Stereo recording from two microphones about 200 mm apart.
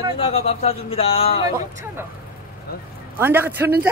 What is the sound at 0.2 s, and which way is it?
Speech, 30° left (ahead or behind).